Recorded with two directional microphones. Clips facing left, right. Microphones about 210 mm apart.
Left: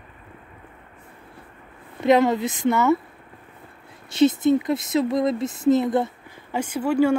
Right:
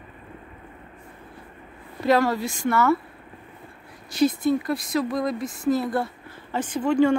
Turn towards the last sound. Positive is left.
turn(degrees=10)  # may be behind; listen again after turning